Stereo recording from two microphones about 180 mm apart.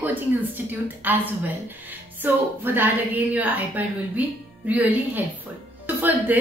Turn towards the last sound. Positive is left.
turn(degrees=-10)  # may be behind; listen again after turning